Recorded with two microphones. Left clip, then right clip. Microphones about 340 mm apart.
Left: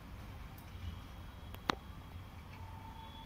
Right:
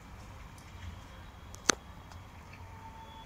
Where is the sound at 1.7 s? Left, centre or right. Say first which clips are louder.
Right 7 dB; right.